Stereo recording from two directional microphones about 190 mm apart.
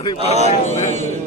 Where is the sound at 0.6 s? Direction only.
35° left (ahead or behind).